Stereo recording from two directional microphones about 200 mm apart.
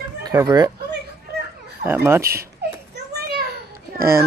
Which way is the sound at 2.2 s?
50° right (ahead or behind).